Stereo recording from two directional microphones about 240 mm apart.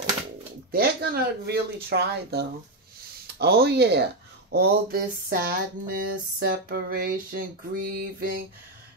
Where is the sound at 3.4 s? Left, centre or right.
Right.